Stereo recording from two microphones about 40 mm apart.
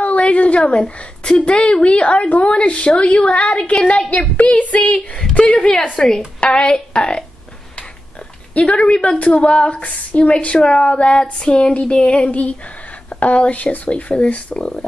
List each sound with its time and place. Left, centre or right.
0.0 s a woman's voice: left
4.1 s female singing: left
5.7 s a woman's voice: centre
8.5 s a woman's voice: left
9.8 s female singing: left
13.1 s a sound: left
13.5 s female singing: left